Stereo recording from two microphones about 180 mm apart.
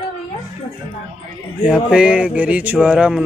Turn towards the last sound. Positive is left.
turn(degrees=-5)  # may be behind; listen again after turning